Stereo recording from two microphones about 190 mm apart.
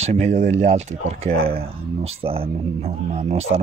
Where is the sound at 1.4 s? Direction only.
50° right (ahead or behind).